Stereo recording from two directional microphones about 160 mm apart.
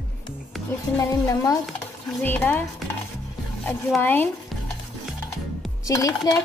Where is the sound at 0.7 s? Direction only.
20° left (ahead or behind).